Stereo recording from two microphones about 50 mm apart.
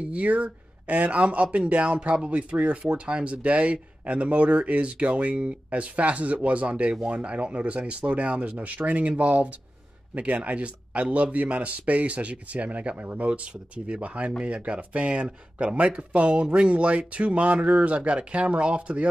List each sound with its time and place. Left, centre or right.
0.0 s speech: right